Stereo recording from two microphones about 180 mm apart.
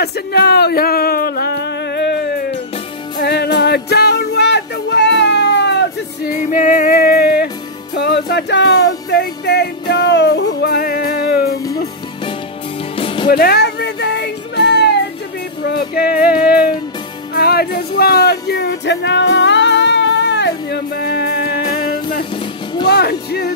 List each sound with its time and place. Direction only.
0.0 s speech: 60° left (ahead or behind)
3.2 s music: 65° left (ahead or behind)
6.4 s music: 50° left (ahead or behind)
7.9 s music: 70° left (ahead or behind)
12.9 s music: 30° left (ahead or behind)
13.3 s music: 65° left (ahead or behind)